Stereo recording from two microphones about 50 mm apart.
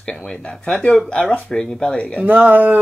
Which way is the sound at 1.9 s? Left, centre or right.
Left.